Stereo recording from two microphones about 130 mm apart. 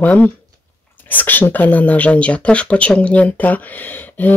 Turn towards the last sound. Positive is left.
turn(degrees=15)  # may be behind; listen again after turning